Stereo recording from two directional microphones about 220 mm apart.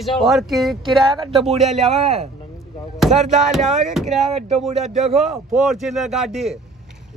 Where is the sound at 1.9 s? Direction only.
30° right (ahead or behind).